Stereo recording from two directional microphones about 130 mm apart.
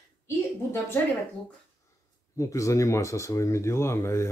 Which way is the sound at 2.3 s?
25° left (ahead or behind).